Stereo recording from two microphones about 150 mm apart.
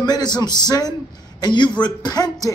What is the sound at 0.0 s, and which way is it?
Speech, 30° left (ahead or behind).